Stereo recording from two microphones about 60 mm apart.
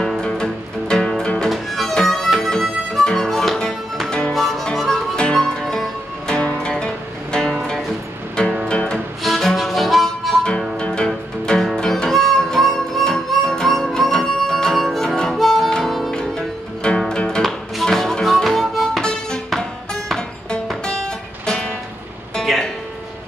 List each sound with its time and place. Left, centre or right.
0.2 s music: centre
1.5 s music: centre
8.6 s music: centre
8.9 s music: centre
10.8 s music: centre
16.2 s music: centre
17.5 s harmonica: centre
22.3 s music: centre